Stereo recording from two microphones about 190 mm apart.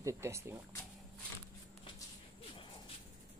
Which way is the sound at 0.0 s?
15° right (ahead or behind).